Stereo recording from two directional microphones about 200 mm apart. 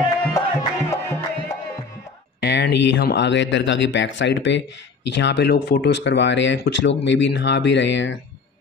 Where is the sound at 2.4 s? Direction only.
55° left (ahead or behind).